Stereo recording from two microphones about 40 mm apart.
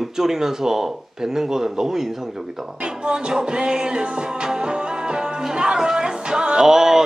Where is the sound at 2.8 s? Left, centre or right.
Right.